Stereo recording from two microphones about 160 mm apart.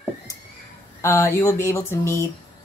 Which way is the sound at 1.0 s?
15° left (ahead or behind).